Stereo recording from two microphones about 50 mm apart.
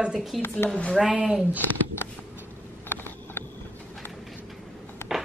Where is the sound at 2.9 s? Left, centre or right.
Left.